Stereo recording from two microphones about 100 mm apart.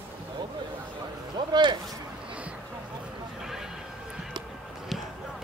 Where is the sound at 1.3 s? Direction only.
50° right (ahead or behind).